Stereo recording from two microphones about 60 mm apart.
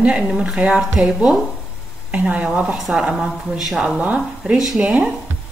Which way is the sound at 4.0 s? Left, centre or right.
Right.